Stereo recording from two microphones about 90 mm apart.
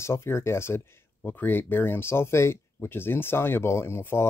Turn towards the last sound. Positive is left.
turn(degrees=30)  # may be behind; listen again after turning